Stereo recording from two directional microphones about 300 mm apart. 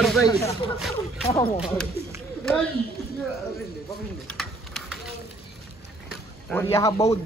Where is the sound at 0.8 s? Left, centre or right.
Centre.